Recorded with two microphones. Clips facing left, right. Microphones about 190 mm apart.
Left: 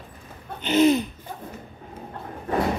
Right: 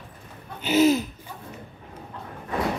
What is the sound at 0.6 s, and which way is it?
Speech, 5° right (ahead or behind).